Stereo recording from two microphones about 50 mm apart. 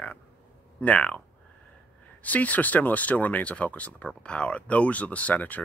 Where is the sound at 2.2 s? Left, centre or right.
Left.